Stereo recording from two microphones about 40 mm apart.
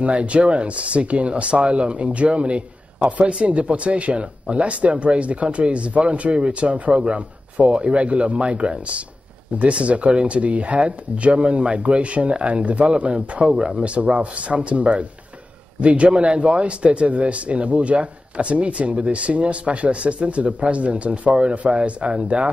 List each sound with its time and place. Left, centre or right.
0.0 s speech: right